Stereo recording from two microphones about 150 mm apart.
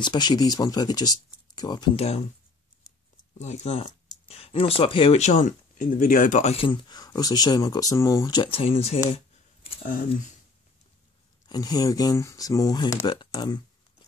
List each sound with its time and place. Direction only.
0.0 s speech: 30° left (ahead or behind)
2.0 s speech: 45° left (ahead or behind)
3.3 s speech: 50° left (ahead or behind)
6.5 s speech: 35° left (ahead or behind)
8.4 s speech: 40° left (ahead or behind)
9.1 s a sound: 40° left (ahead or behind)
11.4 s speech: 25° left (ahead or behind)